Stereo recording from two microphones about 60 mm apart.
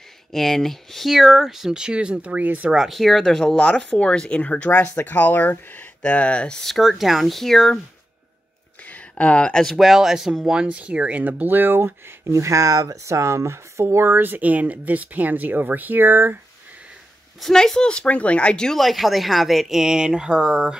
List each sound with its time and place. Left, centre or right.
0.3 s speech: centre; by 2.7 s right
2.7 s speech: centre
6.6 s speech: centre
8.8 s a sound: left
9.8 s speech: centre; by 11.9 s right
12.3 s speech: right
17.4 s speech: centre
18.8 s speech: centre